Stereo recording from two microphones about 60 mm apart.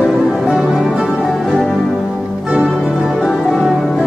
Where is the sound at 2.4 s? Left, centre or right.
Centre.